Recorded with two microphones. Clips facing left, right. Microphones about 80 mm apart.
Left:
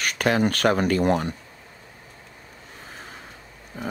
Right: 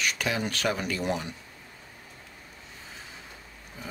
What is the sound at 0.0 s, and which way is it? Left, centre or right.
Speech, left.